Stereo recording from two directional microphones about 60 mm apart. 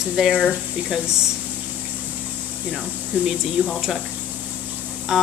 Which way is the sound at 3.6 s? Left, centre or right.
Left.